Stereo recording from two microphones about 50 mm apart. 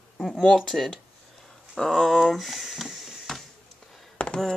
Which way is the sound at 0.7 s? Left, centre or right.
Centre.